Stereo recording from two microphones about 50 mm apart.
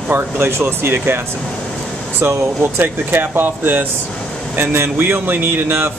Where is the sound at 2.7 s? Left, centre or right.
Right.